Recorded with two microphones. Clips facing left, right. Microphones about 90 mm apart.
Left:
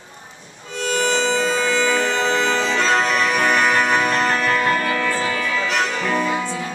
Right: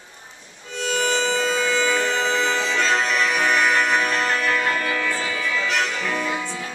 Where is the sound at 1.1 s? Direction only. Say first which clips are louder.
Left 3 dB; 5° right (ahead or behind).